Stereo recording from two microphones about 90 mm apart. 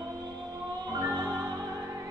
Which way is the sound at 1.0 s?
35° right (ahead or behind).